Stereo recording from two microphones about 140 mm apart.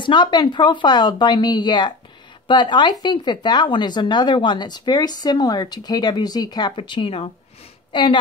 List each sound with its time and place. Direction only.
0.0 s a woman's voice: 35° left (ahead or behind)